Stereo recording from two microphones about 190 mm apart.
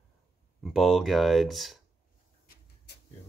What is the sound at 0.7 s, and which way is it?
Speech, centre (ahead or behind).